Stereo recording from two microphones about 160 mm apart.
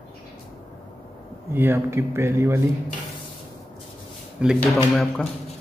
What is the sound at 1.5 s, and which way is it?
Speech, 15° right (ahead or behind).